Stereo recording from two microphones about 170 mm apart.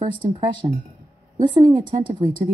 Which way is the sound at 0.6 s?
25° right (ahead or behind).